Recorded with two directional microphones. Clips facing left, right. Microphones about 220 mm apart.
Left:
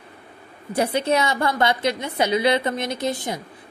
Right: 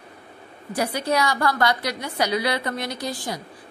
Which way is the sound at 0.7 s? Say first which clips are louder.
Left 3 dB; 25° left (ahead or behind).